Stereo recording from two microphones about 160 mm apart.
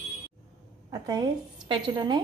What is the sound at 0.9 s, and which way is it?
A woman's voice, 25° right (ahead or behind).